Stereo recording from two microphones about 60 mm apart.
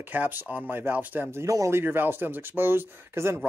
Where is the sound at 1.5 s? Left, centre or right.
Right.